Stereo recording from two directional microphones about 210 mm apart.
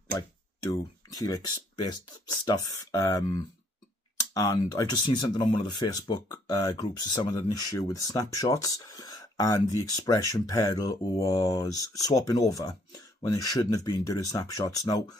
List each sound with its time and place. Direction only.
0.7 s speech: 15° left (ahead or behind)